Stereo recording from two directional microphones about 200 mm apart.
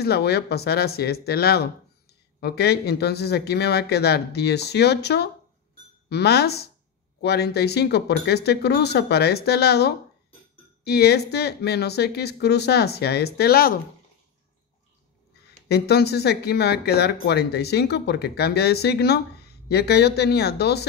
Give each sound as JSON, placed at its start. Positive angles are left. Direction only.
{"t": 0.0, "sound": "speech", "side_deg": 55}
{"t": 15.7, "sound": "speech", "side_deg": 55}